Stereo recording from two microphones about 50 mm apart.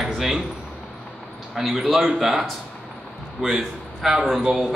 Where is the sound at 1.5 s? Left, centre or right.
Centre.